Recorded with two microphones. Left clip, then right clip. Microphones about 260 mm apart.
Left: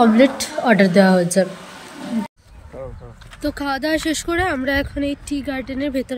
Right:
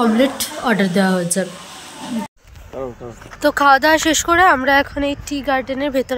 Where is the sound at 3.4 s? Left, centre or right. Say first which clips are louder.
Right 10 dB; centre.